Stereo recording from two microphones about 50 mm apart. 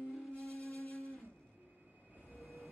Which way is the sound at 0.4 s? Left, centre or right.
Right.